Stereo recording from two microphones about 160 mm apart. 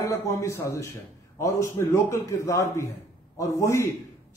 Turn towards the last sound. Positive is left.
turn(degrees=20)  # may be behind; listen again after turning